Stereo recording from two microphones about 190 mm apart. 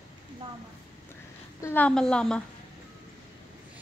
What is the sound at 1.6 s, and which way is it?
Speech, 10° left (ahead or behind).